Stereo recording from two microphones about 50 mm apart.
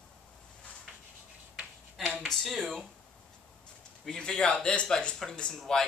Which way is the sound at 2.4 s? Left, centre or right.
Centre.